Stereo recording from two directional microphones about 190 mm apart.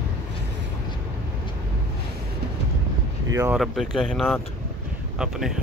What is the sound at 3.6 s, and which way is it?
Speech, centre (ahead or behind).